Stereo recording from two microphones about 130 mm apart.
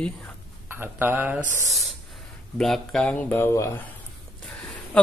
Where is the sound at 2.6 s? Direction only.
5° left (ahead or behind); by 3.9 s 20° left (ahead or behind).